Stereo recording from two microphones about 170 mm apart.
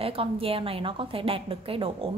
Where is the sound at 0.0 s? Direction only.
35° right (ahead or behind).